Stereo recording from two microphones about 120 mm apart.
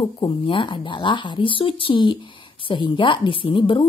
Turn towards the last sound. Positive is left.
turn(degrees=40)  # may be behind; listen again after turning